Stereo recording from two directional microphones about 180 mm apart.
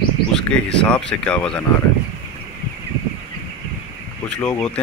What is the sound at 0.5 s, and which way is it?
Speech, 75° right (ahead or behind).